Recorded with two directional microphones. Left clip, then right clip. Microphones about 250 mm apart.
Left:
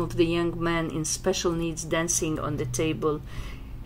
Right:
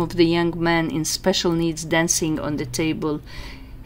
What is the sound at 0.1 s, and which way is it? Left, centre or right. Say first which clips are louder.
Speech: right 6 dB; right.